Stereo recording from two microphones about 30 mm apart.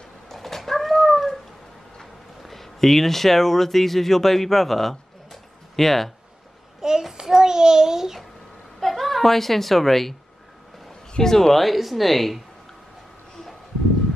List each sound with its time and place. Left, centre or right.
0.3 s cat: centre
1.0 s dog: centre
2.4 s speech: centre
6.8 s child singing: centre
8.7 s a woman's voice: centre
10.9 s a sound: left
11.3 s speech: centre
11.6 s speech: centre